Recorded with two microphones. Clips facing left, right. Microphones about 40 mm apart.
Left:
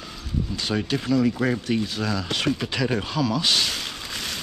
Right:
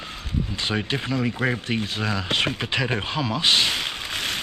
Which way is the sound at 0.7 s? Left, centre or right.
Right.